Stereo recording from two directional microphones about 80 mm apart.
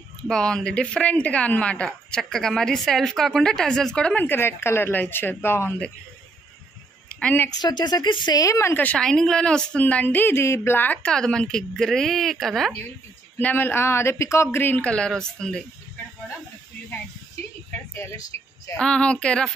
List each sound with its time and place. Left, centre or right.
0.3 s a woman's voice: centre; by 5.8 s left
7.6 s speech: left
8.4 s speech: left
8.9 s a woman's voice: centre; by 11.0 s left
11.0 s speech: centre
13.4 s speech: left
14.6 s speech: left
14.9 s a woman's voice: centre
18.3 s a woman's voice: left
18.8 s a woman's voice: centre